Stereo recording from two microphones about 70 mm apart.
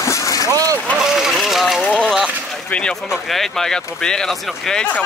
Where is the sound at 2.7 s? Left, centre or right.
Centre.